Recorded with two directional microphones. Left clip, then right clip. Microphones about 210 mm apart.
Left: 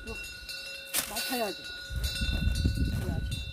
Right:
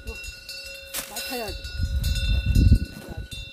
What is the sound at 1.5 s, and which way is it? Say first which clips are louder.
Livestock: right 1 dB; 50° right (ahead or behind).